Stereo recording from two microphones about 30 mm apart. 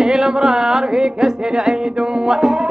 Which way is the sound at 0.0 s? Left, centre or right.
Right.